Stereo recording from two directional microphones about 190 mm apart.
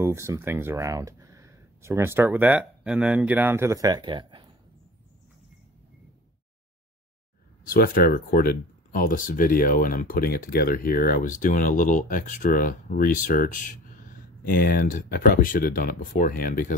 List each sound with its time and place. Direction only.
0.0 s speech: 15° right (ahead or behind)
7.6 s speech: 50° left (ahead or behind)